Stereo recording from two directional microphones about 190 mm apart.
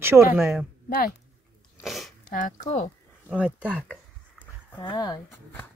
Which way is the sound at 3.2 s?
5° right (ahead or behind).